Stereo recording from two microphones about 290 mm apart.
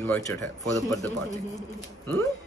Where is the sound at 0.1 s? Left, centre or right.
Centre.